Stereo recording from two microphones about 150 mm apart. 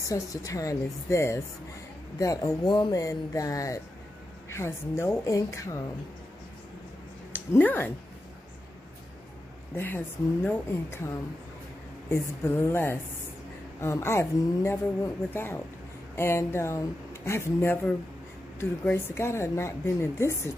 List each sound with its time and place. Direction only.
0.1 s speech: 20° left (ahead or behind)
7.3 s speech: 15° left (ahead or behind)
9.8 s speech: 15° left (ahead or behind)
12.1 s speech: 15° left (ahead or behind)